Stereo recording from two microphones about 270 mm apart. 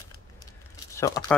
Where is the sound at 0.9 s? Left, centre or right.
Centre.